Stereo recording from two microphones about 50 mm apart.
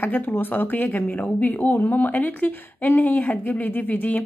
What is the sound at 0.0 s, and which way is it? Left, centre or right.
Speech, left.